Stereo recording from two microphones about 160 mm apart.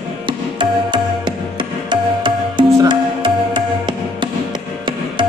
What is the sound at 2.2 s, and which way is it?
Music, 30° right (ahead or behind).